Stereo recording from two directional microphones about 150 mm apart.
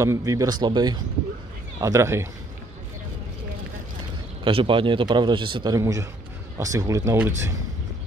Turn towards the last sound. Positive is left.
turn(degrees=-15)  # may be behind; listen again after turning